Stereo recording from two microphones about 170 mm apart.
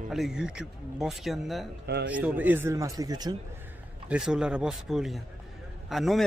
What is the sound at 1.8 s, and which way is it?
Speech, 80° right.